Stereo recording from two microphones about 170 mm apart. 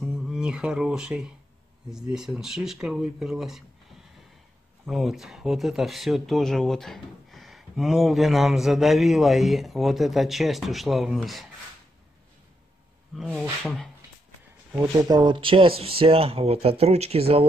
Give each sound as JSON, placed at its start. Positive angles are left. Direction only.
{"t": 0.0, "sound": "speech", "side_deg": 0}
{"t": 13.1, "sound": "speech", "side_deg": 0}
{"t": 15.0, "sound": "speech", "side_deg": -25}